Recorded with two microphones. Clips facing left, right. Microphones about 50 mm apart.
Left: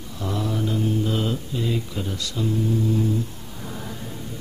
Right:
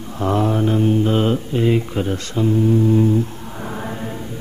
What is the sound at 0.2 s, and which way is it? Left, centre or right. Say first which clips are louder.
Speech: right 8 dB; right.